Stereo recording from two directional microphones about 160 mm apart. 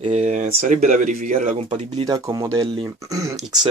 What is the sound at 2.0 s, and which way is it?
Speech, 20° right (ahead or behind).